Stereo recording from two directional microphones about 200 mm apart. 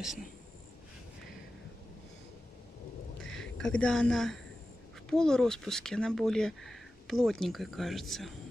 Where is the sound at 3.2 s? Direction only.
Centre (ahead or behind).